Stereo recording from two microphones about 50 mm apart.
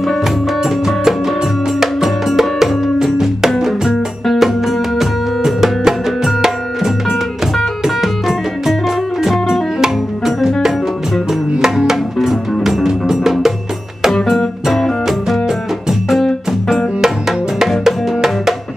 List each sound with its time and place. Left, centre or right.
1.8 s music: centre
15.0 s music: centre